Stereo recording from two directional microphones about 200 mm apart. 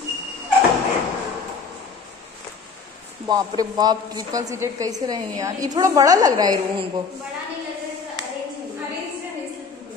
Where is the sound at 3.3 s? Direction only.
20° right (ahead or behind).